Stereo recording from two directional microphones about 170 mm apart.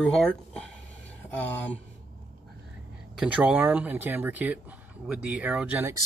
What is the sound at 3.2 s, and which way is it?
Speech, 5° right (ahead or behind).